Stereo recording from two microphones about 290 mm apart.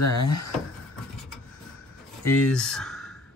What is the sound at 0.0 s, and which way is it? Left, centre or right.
Speech, left.